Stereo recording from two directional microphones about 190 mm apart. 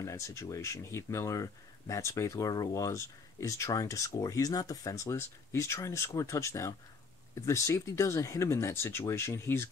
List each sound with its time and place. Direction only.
0.0 s speech: 15° left (ahead or behind)